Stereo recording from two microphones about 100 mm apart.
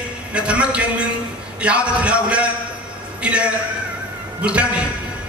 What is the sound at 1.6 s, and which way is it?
A man's voice, 10° right (ahead or behind).